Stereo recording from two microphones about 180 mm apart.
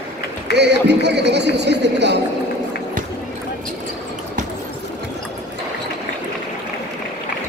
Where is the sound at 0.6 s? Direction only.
70° right (ahead or behind).